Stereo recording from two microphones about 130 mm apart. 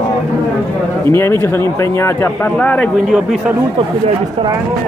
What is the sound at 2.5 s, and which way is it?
Speech, 10° left (ahead or behind).